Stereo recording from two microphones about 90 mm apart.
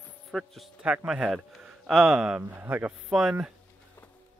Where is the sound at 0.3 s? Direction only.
Centre (ahead or behind).